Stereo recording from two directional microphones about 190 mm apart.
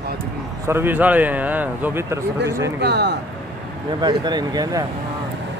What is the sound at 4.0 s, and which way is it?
Speech, 20° right (ahead or behind).